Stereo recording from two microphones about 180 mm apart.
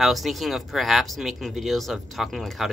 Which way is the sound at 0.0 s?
Centre (ahead or behind).